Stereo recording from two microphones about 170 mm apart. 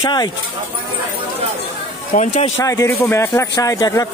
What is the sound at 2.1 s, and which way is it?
Speech, 50° left (ahead or behind).